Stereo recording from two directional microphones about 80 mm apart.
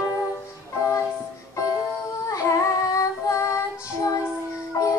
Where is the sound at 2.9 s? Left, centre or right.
Left.